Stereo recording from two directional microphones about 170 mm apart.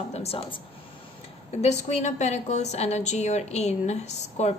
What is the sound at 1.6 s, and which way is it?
A woman's voice, 40° left (ahead or behind).